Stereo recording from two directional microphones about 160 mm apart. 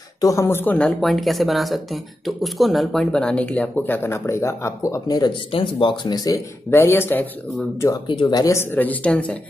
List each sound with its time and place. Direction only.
0.2 s speech: 20° left (ahead or behind)
8.1 s speech: 30° left (ahead or behind); by 9.4 s 10° left (ahead or behind)